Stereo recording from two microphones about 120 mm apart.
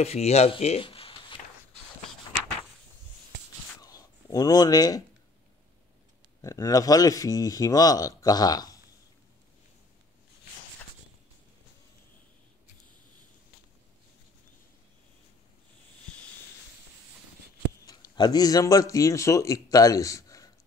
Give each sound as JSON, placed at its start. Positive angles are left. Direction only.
{"t": 0.0, "sound": "speech", "side_deg": 60}
{"t": 3.8, "sound": "a sound", "side_deg": 30}
{"t": 6.4, "sound": "speech", "side_deg": 25}
{"t": 17.7, "sound": "speech", "side_deg": 35}